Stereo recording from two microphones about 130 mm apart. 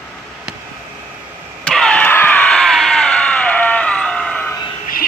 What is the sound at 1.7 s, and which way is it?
Screaming, 5° left (ahead or behind).